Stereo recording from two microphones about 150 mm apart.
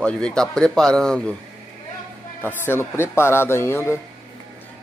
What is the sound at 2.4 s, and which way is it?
Speech, 15° left (ahead or behind).